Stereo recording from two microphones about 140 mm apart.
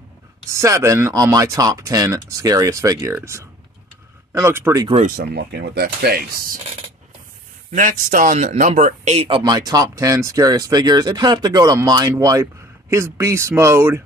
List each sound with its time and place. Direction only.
0.5 s speech: 20° right (ahead or behind)
4.3 s speech: 20° right (ahead or behind)
5.0 s speech: 90° right
7.7 s speech: 70° right (ahead or behind); by 9.4 s 45° right (ahead or behind)
9.4 s speech: 25° right (ahead or behind)